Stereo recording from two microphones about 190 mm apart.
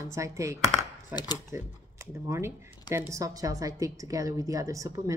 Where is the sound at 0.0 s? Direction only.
15° right (ahead or behind).